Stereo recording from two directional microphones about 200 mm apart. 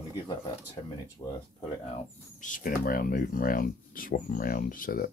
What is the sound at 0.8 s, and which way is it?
Speech, 25° left (ahead or behind).